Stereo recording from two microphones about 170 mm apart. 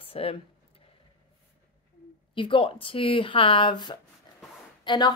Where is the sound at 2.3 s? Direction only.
30° left (ahead or behind).